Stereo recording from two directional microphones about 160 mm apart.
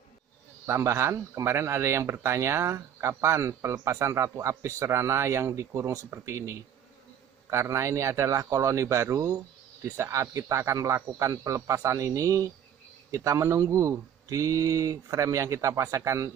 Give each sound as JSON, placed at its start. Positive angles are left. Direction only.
{"t": 0.7, "sound": "speech", "side_deg": -15}